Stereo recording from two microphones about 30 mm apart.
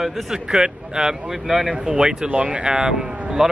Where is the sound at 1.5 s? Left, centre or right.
Centre.